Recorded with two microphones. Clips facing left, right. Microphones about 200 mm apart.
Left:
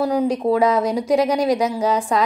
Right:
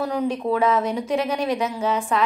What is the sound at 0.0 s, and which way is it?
Speech, 35° left (ahead or behind).